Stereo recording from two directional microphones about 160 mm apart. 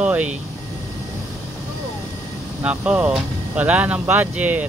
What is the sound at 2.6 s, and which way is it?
Speech, 5° right (ahead or behind).